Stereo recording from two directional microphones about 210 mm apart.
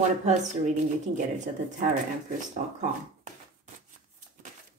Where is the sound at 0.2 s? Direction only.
35° right (ahead or behind).